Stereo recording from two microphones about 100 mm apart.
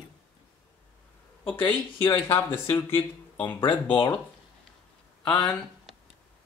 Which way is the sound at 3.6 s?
55° left (ahead or behind).